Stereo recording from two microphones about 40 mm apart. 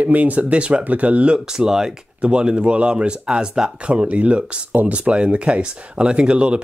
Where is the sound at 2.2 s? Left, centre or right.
Right.